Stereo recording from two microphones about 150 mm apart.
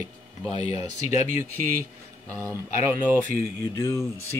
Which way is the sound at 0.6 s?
45° left (ahead or behind).